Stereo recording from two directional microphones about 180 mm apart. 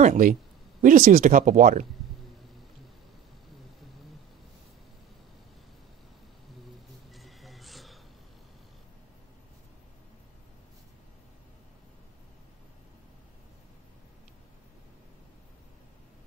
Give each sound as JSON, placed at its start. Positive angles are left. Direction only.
{"t": 0.0, "sound": "speech", "side_deg": -45}
{"t": 7.1, "sound": "music", "side_deg": 0}